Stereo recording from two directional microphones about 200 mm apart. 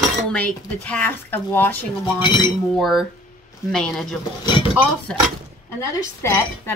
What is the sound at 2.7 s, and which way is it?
A woman's voice, centre (ahead or behind).